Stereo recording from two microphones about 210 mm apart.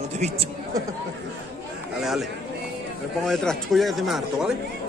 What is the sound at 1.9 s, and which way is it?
Speech, centre (ahead or behind).